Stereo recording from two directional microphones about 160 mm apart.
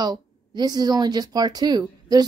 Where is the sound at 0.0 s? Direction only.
25° right (ahead or behind).